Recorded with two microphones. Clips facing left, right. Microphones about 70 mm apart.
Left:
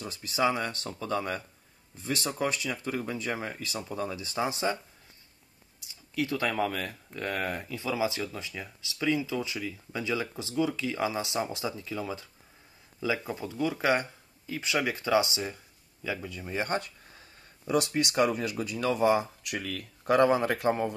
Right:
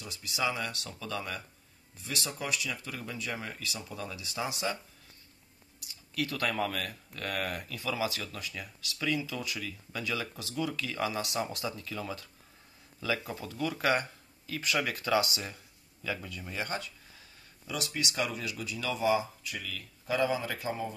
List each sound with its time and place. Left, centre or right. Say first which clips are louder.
0.0 s speech: left 6 dB; left
6.1 s speech: left 3 dB; left
16.6 s speech: left 6 dB; left
19.4 s a man's voice: left 5 dB; left